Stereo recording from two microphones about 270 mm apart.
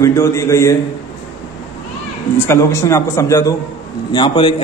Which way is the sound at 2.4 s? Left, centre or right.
Centre.